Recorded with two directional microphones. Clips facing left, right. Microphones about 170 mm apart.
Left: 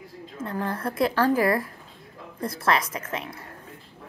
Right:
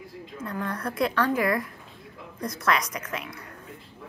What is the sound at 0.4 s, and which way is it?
A woman's voice, 30° left (ahead or behind).